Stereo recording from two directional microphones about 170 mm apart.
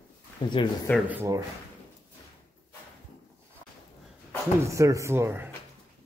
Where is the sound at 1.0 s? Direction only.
15° right (ahead or behind).